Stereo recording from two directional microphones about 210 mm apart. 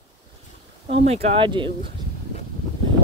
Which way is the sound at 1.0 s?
30° right (ahead or behind).